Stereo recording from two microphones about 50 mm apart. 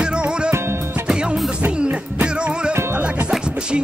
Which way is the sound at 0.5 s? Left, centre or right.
Right.